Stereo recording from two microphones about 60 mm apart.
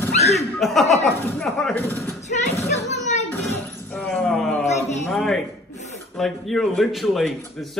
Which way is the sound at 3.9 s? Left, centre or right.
Centre.